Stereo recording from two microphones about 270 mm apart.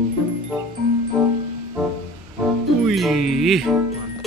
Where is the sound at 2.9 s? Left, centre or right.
Centre.